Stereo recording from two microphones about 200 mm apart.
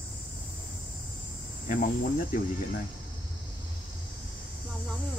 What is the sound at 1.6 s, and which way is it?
Speech, 45° left (ahead or behind).